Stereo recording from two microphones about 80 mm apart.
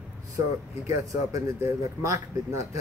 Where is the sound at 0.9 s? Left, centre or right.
Right.